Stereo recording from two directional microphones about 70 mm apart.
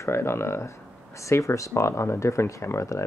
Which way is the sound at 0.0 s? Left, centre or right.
Left.